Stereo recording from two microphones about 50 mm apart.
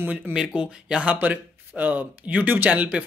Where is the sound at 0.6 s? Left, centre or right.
Right.